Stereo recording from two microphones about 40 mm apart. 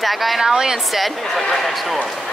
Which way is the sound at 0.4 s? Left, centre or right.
Centre.